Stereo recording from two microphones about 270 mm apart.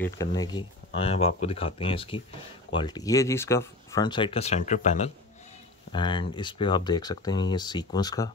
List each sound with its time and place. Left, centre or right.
0.0 s speech: centre